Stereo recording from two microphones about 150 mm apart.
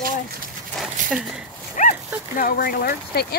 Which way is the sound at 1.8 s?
55° left (ahead or behind).